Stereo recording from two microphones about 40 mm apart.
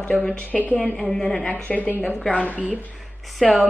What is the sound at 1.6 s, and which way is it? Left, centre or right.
Speech, left.